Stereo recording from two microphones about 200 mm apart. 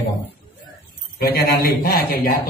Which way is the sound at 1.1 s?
50° left (ahead or behind).